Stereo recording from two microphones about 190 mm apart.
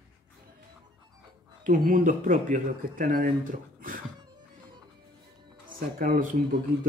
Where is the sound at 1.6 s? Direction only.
45° right (ahead or behind).